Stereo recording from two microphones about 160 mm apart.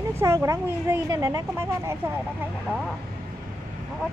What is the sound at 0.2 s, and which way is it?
Speech, 20° right (ahead or behind).